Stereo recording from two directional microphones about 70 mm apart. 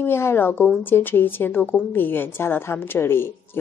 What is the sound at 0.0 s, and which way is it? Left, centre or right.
A woman's voice, left.